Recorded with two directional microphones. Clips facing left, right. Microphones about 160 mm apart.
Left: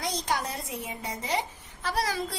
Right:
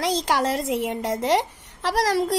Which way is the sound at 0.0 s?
90° right.